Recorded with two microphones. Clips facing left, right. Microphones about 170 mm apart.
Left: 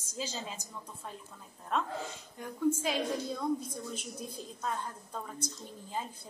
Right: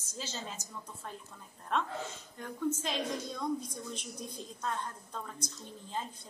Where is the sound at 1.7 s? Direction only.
Centre (ahead or behind).